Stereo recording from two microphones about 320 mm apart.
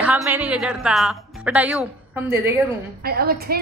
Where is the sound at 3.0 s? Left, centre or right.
Right.